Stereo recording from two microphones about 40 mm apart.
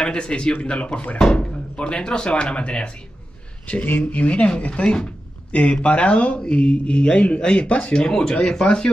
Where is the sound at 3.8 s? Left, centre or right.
Left.